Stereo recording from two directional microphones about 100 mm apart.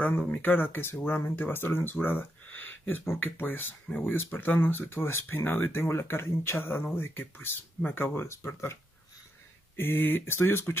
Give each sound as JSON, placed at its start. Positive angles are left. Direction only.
{"t": 0.3, "sound": "speech", "side_deg": 20}
{"t": 9.8, "sound": "speech", "side_deg": 20}